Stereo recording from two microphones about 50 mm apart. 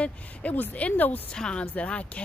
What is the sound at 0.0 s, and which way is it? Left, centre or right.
Speech, left.